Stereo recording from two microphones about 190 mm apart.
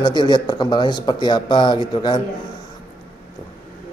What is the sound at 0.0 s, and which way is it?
Speech, 25° left (ahead or behind).